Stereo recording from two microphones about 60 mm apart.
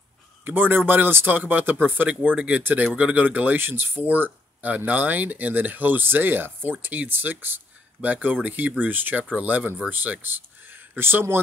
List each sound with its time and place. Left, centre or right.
0.5 s speech: right